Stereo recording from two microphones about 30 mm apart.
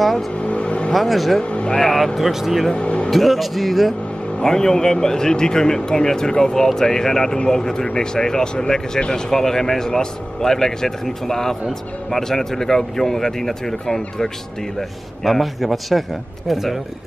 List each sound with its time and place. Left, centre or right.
0.4 s vehicle: left
0.9 s speech: centre
1.4 s vehicle: left
1.8 s speech: centre
2.1 s speech: centre
2.7 s speech: left
3.1 s speech: centre
4.4 s speech: centre
15.2 s speech: centre